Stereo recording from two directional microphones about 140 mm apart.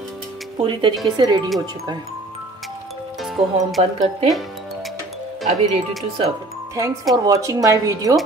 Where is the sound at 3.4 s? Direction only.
45° right (ahead or behind).